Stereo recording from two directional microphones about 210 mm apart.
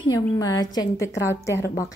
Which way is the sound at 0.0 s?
15° left (ahead or behind).